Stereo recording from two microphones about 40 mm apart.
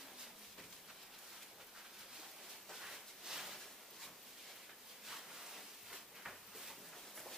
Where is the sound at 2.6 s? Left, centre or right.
Centre.